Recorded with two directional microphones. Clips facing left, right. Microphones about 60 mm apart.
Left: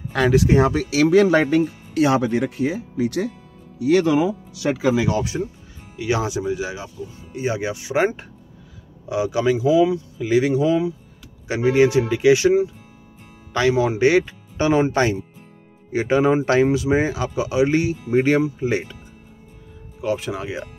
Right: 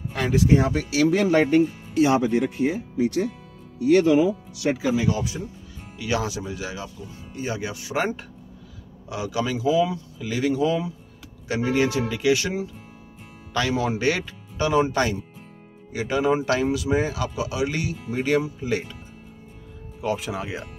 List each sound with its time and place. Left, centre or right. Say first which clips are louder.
0.1 s speech: left 4 dB; left
2.0 s speech: left 1 dB; left
4.9 s speech: left 3 dB; left
5.9 s speech: left 4 dB; left
20.0 s speech: left 3 dB; centre